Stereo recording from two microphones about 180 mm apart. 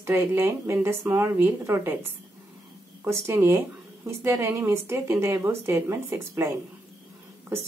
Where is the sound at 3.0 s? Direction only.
15° right (ahead or behind).